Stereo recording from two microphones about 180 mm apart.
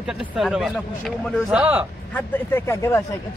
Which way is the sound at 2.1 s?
10° left (ahead or behind).